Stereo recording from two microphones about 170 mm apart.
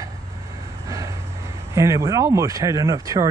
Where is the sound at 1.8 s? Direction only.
20° right (ahead or behind).